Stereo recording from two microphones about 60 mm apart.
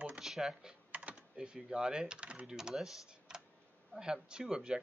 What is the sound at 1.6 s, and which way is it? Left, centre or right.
A man's voice, centre.